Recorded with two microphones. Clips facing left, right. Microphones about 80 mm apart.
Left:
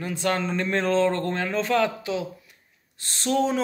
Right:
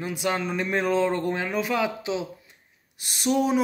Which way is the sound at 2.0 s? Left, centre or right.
Right.